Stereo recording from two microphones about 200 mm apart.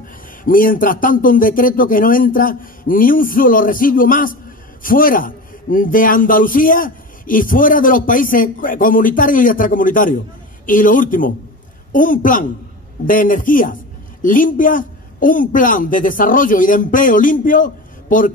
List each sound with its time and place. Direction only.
0.4 s a man's voice: 45° left (ahead or behind)